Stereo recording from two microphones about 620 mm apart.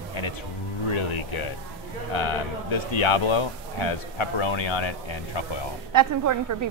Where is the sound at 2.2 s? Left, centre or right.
Left.